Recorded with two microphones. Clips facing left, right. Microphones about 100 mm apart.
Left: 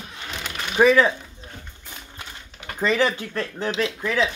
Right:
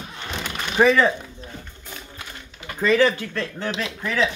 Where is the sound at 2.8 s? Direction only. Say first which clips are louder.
Right 3 dB; 20° left (ahead or behind).